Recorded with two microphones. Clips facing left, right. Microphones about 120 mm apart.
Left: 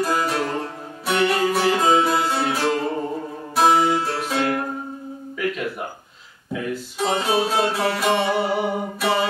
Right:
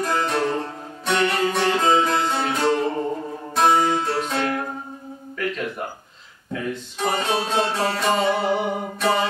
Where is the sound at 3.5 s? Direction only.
5° left (ahead or behind).